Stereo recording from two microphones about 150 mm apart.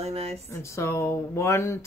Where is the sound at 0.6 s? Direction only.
20° left (ahead or behind).